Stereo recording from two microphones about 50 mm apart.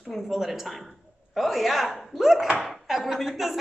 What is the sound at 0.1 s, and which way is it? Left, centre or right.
A woman's voice, centre.